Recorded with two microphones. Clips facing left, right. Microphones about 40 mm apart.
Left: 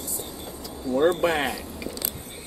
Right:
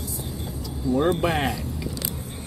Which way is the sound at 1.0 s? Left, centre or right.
Centre.